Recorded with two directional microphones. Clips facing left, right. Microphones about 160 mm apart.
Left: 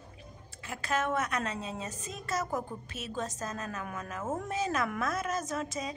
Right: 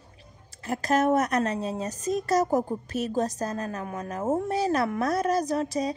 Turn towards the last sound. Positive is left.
turn(degrees=-35)  # may be behind; listen again after turning